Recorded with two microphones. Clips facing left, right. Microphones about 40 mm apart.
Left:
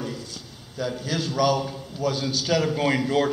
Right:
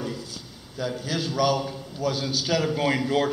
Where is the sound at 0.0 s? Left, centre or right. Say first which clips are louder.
Even; centre.